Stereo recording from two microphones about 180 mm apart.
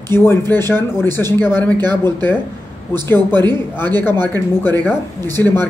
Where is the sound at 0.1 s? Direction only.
15° left (ahead or behind).